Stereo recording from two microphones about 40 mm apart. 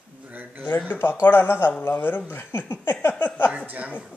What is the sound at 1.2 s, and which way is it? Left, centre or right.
Speech, left.